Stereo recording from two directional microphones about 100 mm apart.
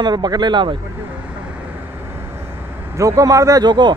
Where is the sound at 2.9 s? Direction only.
30° right (ahead or behind); by 3.9 s 50° right (ahead or behind).